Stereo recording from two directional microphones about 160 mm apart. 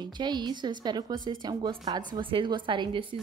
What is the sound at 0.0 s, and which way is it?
A woman's voice, 25° right (ahead or behind).